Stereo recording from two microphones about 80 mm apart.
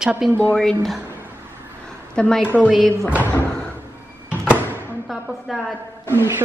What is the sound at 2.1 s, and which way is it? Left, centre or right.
Speech, centre.